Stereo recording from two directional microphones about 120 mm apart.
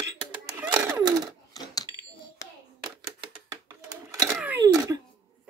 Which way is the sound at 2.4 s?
25° left (ahead or behind).